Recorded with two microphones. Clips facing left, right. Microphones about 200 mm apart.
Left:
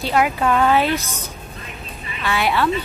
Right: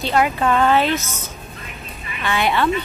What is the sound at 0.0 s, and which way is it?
Speech, 5° left (ahead or behind).